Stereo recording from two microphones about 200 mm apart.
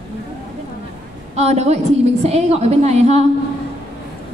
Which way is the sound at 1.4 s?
35° right (ahead or behind).